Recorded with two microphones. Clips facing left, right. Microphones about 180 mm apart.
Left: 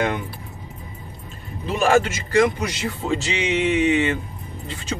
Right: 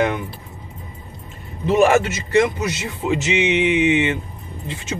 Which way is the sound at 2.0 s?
25° right (ahead or behind).